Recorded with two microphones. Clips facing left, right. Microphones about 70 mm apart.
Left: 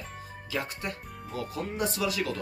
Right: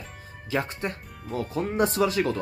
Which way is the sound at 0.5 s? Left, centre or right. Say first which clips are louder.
Right 5 dB; right.